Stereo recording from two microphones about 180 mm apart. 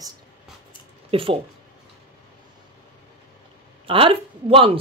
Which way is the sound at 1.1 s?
30° right (ahead or behind).